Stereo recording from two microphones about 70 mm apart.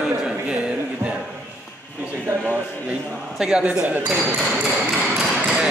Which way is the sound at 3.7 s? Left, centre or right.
Right.